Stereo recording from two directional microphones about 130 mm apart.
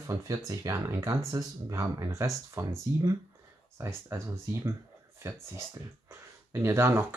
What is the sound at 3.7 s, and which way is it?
Speech, 15° right (ahead or behind).